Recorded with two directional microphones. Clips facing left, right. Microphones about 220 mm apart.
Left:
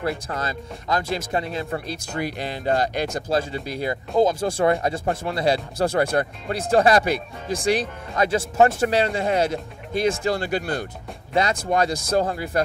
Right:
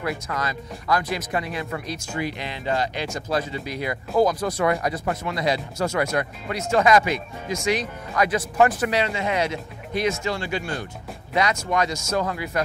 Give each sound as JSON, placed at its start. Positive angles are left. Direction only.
{"t": 0.3, "sound": "speech", "side_deg": 30}